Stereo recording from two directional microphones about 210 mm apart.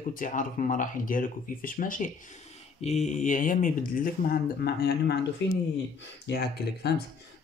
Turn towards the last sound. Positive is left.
turn(degrees=50)  # may be behind; listen again after turning